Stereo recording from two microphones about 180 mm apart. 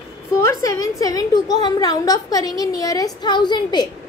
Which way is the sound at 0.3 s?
15° left (ahead or behind).